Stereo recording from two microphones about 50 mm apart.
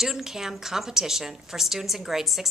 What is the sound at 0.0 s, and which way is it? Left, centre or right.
A woman's voice, centre.